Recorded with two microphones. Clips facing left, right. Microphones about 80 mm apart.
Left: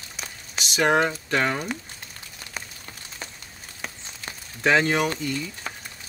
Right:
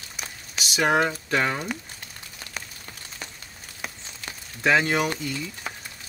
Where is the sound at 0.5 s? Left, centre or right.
Centre.